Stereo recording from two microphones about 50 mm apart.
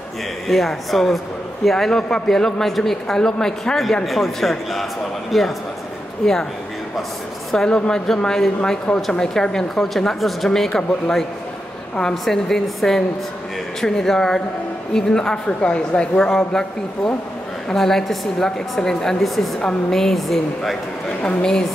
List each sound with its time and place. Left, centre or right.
0.5 s a man's voice: centre
4.0 s a man's voice: centre
7.5 s a man's voice: centre
10.8 s a man's voice: left
12.0 s a man's voice: centre
21.4 s a man's voice: centre